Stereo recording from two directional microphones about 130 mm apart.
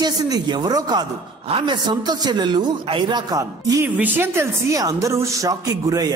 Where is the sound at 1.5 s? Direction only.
45° right (ahead or behind).